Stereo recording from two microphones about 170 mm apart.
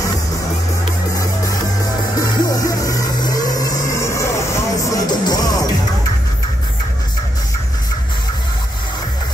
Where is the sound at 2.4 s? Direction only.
20° left (ahead or behind).